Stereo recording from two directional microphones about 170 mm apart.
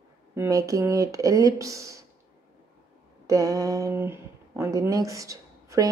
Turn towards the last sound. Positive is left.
turn(degrees=-20)  # may be behind; listen again after turning